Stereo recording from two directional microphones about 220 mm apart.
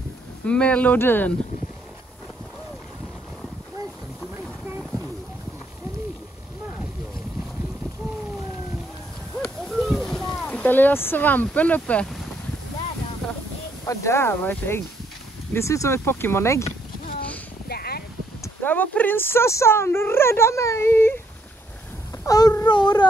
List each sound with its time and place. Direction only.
0.5 s speech: 5° left (ahead or behind)
9.4 s a sound: centre (ahead or behind)
13.8 s speech: 10° left (ahead or behind)
17.6 s a sound: 45° left (ahead or behind)
18.4 s speech: 10° left (ahead or behind)
22.2 s speech: 15° left (ahead or behind)